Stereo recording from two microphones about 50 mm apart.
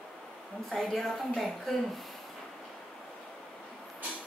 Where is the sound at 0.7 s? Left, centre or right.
Centre.